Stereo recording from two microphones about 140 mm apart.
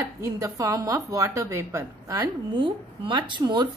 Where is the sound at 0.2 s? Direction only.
25° right (ahead or behind).